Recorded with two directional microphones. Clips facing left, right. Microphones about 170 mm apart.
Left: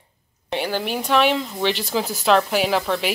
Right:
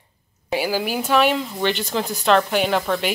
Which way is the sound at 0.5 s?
5° right (ahead or behind).